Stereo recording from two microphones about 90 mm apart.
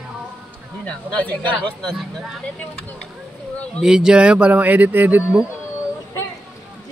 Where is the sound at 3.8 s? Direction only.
5° right (ahead or behind).